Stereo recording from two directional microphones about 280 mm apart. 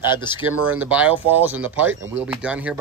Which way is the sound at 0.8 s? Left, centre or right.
Centre.